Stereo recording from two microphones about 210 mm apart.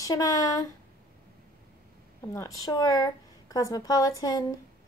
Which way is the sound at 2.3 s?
15° left (ahead or behind).